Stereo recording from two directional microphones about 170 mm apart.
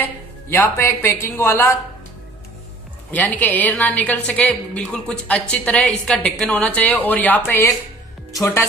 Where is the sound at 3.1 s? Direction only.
10° left (ahead or behind).